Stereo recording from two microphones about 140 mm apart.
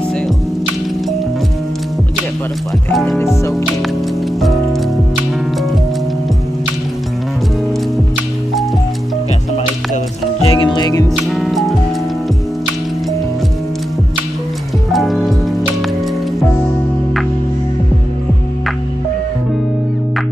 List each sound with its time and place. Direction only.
2.9 s speech: centre (ahead or behind)
4.4 s music: centre (ahead or behind)
10.4 s music: 35° left (ahead or behind)
11.3 s music: centre (ahead or behind)
14.9 s music: centre (ahead or behind)